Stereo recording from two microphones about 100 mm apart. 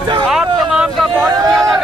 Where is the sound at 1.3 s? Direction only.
40° right (ahead or behind).